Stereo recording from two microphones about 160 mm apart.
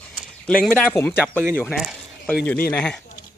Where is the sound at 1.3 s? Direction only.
10° right (ahead or behind).